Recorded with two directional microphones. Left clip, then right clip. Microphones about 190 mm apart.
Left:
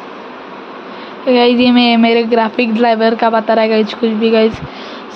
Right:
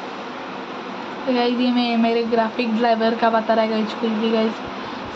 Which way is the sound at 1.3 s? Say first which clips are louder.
Left 10 dB; 60° left (ahead or behind).